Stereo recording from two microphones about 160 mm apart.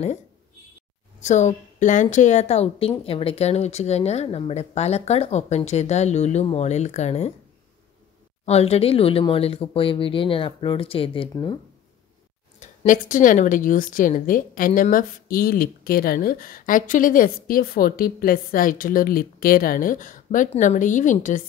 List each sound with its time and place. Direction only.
1.2 s speech: 50° left (ahead or behind)
8.5 s speech: 40° left (ahead or behind)
12.5 s a woman's voice: 55° left (ahead or behind)